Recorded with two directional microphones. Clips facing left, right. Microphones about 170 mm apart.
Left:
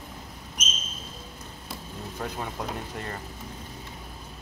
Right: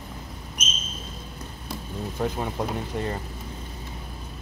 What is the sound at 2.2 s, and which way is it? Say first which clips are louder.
Speech: right 6 dB; 25° right (ahead or behind).